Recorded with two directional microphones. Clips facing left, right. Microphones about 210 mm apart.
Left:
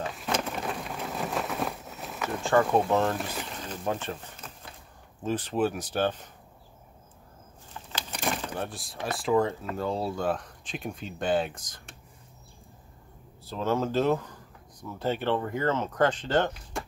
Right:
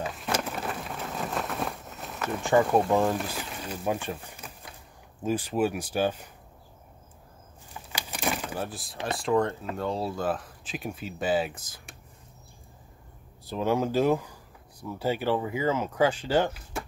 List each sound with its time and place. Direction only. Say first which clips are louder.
0.0 s a sound: even; centre (ahead or behind)
2.6 s speech: right 1 dB; 5° right (ahead or behind)
7.9 s vehicle: right 1 dB; 5° right (ahead or behind)
9.0 s speech: even; centre (ahead or behind)
13.5 s speech: right 2 dB; 15° right (ahead or behind)